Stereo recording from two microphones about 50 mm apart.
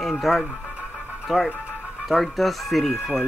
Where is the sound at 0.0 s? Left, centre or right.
Centre.